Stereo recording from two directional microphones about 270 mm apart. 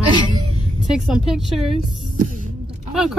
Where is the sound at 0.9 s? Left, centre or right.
Centre.